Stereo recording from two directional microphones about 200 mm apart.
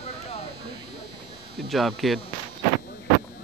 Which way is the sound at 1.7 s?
Centre (ahead or behind).